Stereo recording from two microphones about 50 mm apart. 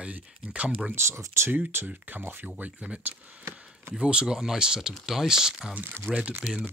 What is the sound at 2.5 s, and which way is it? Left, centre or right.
Speech, right.